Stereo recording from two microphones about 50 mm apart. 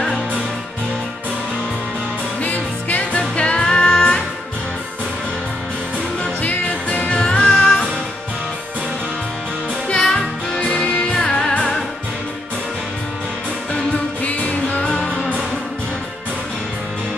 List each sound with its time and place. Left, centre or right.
2.4 s music: left
6.4 s music: left
7.2 s music: centre
9.8 s music: centre
14.2 s music: left
14.8 s music: centre